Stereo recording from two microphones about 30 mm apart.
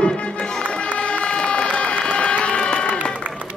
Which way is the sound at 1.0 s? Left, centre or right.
Left.